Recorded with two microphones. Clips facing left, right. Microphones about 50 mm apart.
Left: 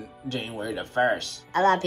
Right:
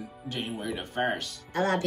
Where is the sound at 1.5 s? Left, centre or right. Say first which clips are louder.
Left 6 dB; left.